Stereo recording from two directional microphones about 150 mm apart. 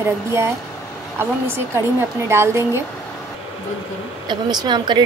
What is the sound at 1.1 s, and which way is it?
A woman's voice, 15° right (ahead or behind).